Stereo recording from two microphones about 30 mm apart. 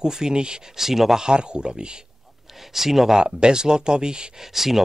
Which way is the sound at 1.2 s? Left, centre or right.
Right.